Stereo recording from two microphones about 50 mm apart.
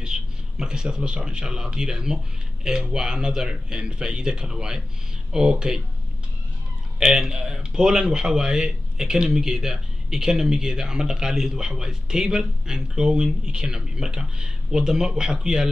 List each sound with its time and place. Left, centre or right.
0.0 s a man's voice: centre
7.0 s a man's voice: centre